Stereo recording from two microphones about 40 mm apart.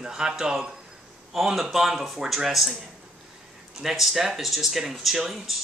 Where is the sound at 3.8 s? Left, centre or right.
Centre.